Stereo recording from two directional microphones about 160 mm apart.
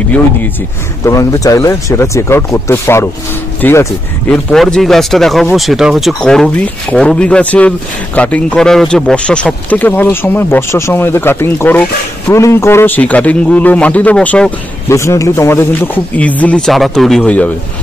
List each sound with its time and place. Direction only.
1.0 s speech: 20° left (ahead or behind)